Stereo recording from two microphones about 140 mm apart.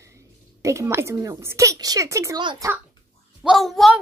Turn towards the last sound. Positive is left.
turn(degrees=0)  # may be behind; listen again after turning